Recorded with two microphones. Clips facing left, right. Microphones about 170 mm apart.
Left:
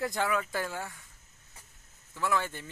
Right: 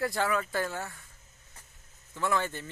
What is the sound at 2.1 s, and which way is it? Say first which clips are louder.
Speech: right 1 dB; 5° left (ahead or behind).